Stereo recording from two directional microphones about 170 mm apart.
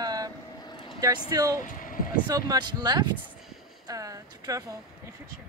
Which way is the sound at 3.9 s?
20° right (ahead or behind).